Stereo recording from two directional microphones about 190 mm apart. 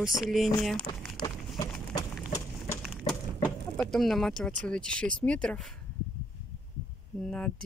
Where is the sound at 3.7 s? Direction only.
Centre (ahead or behind).